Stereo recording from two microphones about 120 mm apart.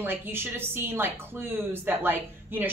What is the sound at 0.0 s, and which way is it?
A woman's voice, 20° right (ahead or behind).